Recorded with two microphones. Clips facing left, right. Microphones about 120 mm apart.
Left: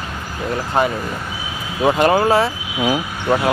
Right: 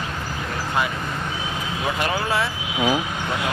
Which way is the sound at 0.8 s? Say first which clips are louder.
Left 6 dB; 45° left (ahead or behind).